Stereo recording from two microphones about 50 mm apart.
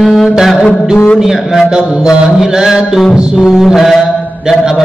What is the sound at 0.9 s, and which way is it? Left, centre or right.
Music, left.